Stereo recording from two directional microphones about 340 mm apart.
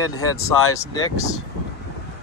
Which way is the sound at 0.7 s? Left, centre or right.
Centre.